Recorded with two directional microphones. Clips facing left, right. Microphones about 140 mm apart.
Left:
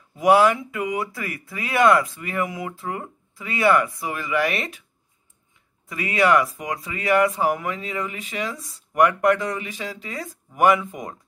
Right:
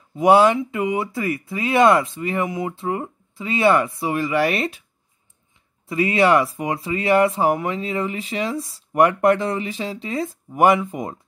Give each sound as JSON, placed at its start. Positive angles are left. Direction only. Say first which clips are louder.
{"t": 0.2, "sound": "speech", "louder": "right 2 dB", "side_deg": -25}
{"t": 5.9, "sound": "speech", "louder": "right 3 dB", "side_deg": -30}